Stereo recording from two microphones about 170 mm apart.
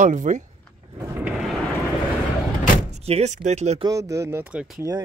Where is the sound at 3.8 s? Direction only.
20° right (ahead or behind); by 4.8 s 5° right (ahead or behind).